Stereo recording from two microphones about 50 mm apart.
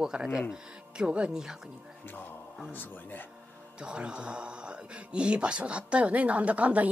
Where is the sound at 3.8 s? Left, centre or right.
Centre.